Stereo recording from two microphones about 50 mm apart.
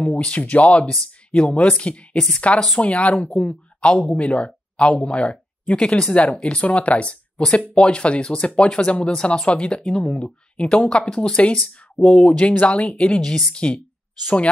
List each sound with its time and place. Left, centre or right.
0.3 s speech: left
0.8 s speech: centre
12.4 s speech: left